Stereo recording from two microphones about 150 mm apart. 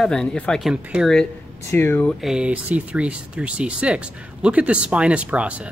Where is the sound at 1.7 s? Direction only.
15° left (ahead or behind).